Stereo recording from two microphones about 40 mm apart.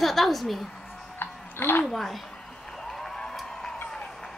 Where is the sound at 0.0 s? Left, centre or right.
Centre.